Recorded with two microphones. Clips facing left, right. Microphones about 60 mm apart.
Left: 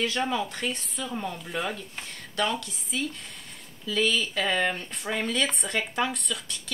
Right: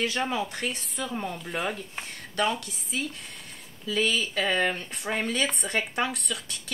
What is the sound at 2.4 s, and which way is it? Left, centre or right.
Speech, centre.